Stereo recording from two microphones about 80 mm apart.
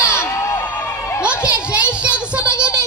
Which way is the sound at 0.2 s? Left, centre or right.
Left.